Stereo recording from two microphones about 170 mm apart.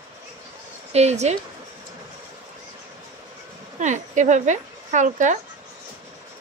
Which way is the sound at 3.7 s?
45° right (ahead or behind).